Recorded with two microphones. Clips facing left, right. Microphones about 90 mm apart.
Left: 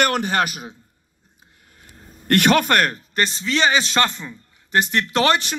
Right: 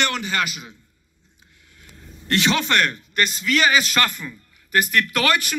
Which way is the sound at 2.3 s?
50° left (ahead or behind).